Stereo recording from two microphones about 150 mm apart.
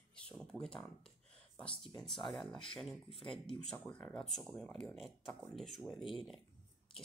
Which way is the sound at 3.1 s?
35° left (ahead or behind).